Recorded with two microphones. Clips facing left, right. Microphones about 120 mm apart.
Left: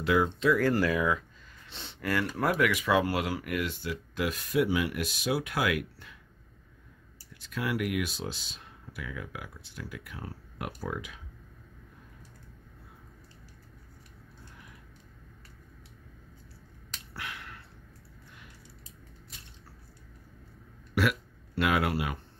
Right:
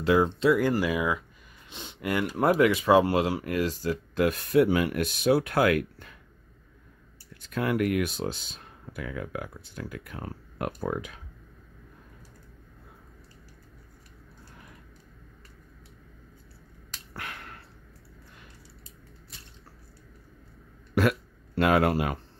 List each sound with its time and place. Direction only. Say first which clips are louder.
0.0 s speech: right 3 dB; 35° right (ahead or behind)
0.6 s speech: right 1 dB; 15° right (ahead or behind); by 6.1 s 45° right (ahead or behind)
7.4 s speech: right 5 dB; 50° right (ahead or behind)
17.1 s finger snapping: right 2 dB; 45° right (ahead or behind)
20.9 s speech: right 4 dB; 40° right (ahead or behind)